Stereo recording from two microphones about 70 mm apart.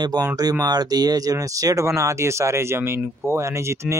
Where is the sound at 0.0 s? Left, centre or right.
Right.